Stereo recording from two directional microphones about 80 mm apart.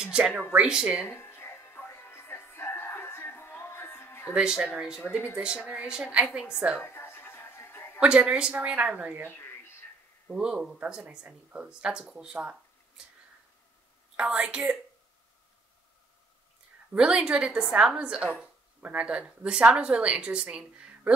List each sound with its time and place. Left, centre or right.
0.0 s speech: centre
1.0 s music: left
4.3 s speech: centre
6.8 s a sound: left
8.0 s speech: centre
9.3 s a sound: left
10.2 s speech: centre
14.1 s speech: centre
16.9 s speech: centre